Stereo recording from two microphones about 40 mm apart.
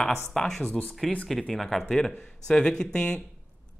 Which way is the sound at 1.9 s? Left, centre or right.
Centre.